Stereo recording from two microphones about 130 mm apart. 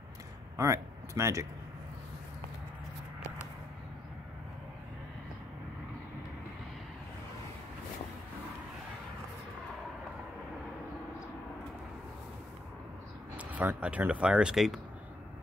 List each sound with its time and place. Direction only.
0.6 s speech: 25° right (ahead or behind)
13.4 s speech: 10° right (ahead or behind)